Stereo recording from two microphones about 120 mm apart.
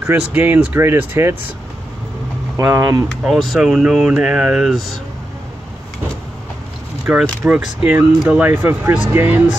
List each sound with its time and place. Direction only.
0.0 s speech: 15° right (ahead or behind)
2.5 s speech: 25° right (ahead or behind)
3.1 s speech: centre (ahead or behind)
7.1 s speech: 10° right (ahead or behind)